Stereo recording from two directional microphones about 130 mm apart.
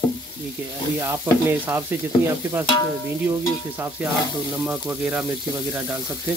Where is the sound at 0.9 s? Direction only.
20° right (ahead or behind).